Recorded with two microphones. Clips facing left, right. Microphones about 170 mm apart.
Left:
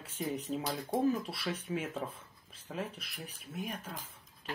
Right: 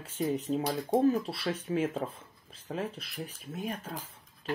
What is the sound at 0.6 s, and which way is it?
Speech, 50° right (ahead or behind).